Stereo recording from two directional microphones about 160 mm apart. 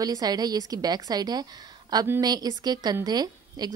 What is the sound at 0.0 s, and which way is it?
Speech, 25° right (ahead or behind).